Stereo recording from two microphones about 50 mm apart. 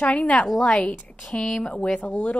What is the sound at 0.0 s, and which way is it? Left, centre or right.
Speech, left.